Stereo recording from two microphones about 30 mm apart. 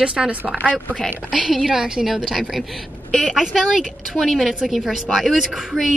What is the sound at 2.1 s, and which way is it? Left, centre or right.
A woman's voice, centre.